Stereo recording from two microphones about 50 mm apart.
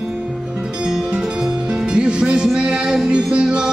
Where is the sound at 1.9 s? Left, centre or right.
Centre.